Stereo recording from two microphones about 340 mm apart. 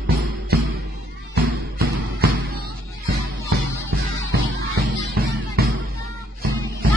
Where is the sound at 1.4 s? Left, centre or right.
Right.